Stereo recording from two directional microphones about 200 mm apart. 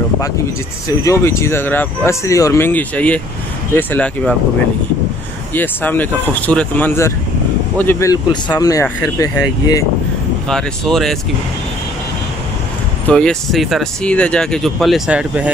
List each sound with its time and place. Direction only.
0.8 s speech: 15° left (ahead or behind)
5.5 s speech: 10° left (ahead or behind)
10.5 s speech: centre (ahead or behind)
13.1 s speech: 5° left (ahead or behind)